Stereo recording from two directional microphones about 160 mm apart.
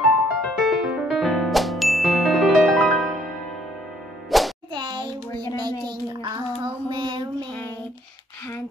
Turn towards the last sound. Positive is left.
turn(degrees=-30)  # may be behind; listen again after turning